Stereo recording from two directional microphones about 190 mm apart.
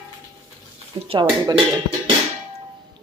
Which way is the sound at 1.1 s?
25° right (ahead or behind).